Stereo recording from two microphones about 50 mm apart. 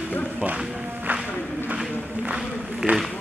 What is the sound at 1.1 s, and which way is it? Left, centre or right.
Music, right.